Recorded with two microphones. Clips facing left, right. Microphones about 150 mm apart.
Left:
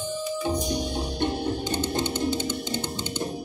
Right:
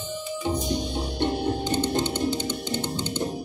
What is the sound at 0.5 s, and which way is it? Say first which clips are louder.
Music: even; 15° left (ahead or behind).